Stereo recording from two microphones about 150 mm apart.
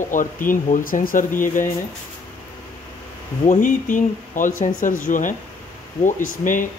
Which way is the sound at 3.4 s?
60° left (ahead or behind).